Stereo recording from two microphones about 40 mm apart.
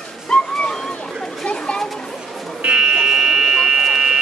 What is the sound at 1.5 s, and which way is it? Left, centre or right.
Children playing, centre.